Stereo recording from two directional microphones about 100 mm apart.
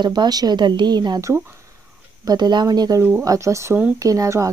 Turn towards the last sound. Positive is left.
turn(degrees=-35)  # may be behind; listen again after turning